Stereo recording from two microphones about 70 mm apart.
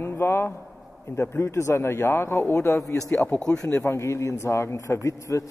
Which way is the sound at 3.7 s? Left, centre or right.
Left.